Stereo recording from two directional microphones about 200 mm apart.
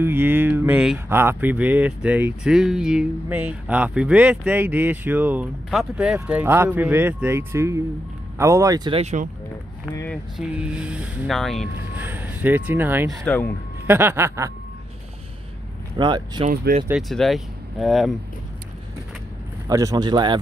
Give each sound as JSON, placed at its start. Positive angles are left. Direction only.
{"t": 0.0, "sound": "speech", "side_deg": -10}
{"t": 9.0, "sound": "speech", "side_deg": -40}
{"t": 10.3, "sound": "speech", "side_deg": -5}
{"t": 12.0, "sound": "speech", "side_deg": -10}
{"t": 13.2, "sound": "speech", "side_deg": 5}
{"t": 13.8, "sound": "speech", "side_deg": -10}
{"t": 16.0, "sound": "speech", "side_deg": -20}
{"t": 16.4, "sound": "speech", "side_deg": -40}
{"t": 17.1, "sound": "speech", "side_deg": 0}
{"t": 19.7, "sound": "speech", "side_deg": -15}